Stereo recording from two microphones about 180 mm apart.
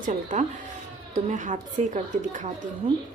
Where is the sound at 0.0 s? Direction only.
40° right (ahead or behind).